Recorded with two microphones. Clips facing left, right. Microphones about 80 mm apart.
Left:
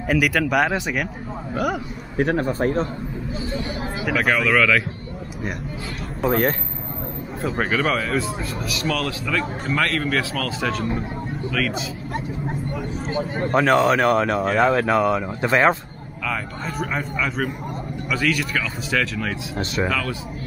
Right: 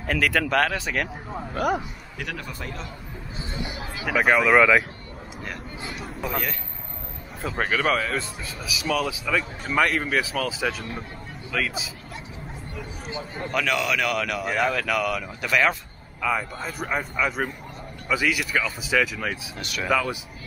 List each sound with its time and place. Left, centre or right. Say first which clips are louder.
0.0 s speech: left 4 dB; centre
1.5 s speech: left 1 dB; centre
2.1 s speech: left 14 dB; left
4.1 s a man's voice: right 1 dB; centre
4.6 s a man's voice: right 2 dB; right
6.2 s speech: left 9 dB; left
7.4 s speech: left 2 dB; centre
13.1 s speech: left 8 dB; left
16.3 s a man's voice: right 1 dB; centre
19.5 s speech: left 8 dB; left
19.9 s a man's voice: right 1 dB; centre